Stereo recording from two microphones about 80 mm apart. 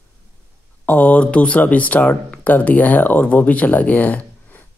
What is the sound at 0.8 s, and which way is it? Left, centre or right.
Speech, centre.